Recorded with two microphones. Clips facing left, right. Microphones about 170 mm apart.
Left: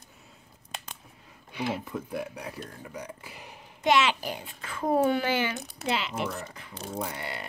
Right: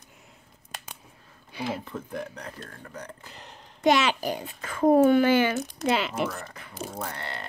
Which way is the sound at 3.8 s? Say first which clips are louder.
Right 2 dB; 40° right (ahead or behind).